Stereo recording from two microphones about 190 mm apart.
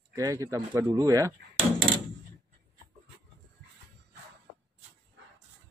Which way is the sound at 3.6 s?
65° right (ahead or behind).